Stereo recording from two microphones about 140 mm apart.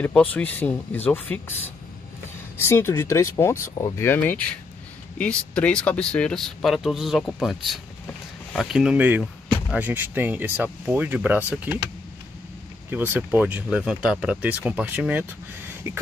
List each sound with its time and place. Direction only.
0.0 s speech: 10° left (ahead or behind); by 11.8 s 10° right (ahead or behind)
12.9 s speech: 15° right (ahead or behind)